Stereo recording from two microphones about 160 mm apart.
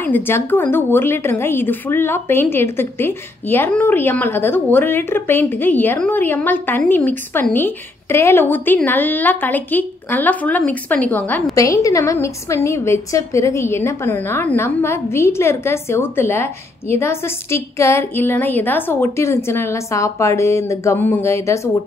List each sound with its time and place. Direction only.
0.0 s a woman's voice: 10° left (ahead or behind)